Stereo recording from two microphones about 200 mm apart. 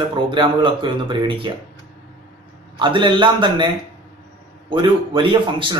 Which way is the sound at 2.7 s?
25° right (ahead or behind).